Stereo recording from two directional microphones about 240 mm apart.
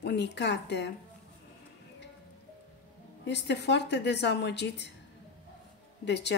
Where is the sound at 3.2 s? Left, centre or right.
Left.